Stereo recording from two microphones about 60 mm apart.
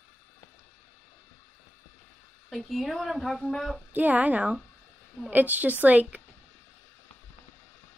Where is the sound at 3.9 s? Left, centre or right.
Right.